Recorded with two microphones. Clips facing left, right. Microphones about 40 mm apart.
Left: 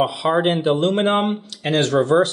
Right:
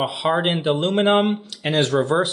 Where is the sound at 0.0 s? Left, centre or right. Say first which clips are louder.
Left 2 dB; centre.